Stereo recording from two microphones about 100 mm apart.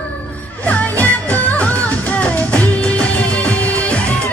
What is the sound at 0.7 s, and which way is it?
Music, 15° left (ahead or behind).